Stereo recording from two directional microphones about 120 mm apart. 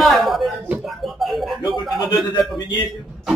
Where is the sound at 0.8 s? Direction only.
Centre (ahead or behind).